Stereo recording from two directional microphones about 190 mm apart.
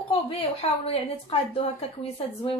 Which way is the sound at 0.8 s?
30° left (ahead or behind).